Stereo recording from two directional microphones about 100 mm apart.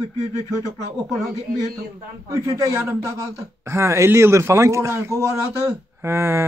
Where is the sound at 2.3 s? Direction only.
30° right (ahead or behind).